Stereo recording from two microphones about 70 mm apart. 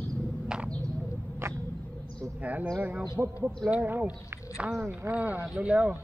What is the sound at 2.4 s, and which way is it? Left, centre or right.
Speech, right.